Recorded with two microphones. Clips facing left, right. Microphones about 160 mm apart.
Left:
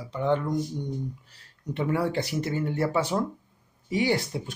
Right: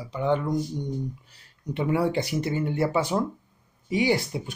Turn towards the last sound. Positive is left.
turn(degrees=-15)  # may be behind; listen again after turning